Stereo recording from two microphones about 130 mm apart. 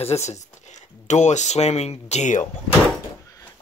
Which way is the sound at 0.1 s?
60° left (ahead or behind).